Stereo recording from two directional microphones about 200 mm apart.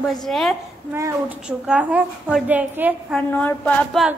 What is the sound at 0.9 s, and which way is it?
A woman's voice, 10° right (ahead or behind).